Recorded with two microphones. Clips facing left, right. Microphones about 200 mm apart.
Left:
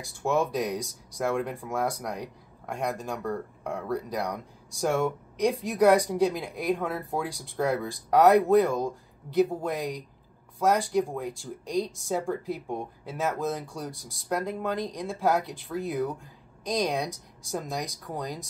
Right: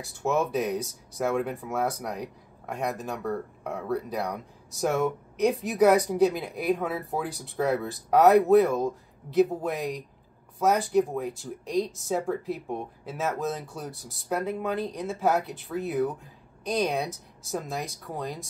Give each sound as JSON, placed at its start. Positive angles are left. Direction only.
{"t": 0.0, "sound": "speech", "side_deg": -5}